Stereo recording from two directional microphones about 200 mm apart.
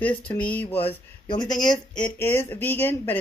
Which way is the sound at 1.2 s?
20° left (ahead or behind).